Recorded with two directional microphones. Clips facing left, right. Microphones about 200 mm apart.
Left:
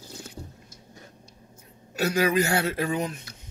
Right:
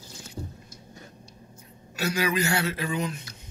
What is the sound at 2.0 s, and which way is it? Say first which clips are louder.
Speech: left 3 dB; 45° left (ahead or behind).